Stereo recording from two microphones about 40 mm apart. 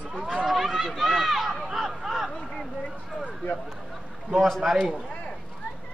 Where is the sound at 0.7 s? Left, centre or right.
Centre.